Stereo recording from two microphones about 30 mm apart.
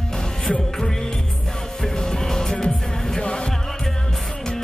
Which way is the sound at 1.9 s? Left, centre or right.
Left.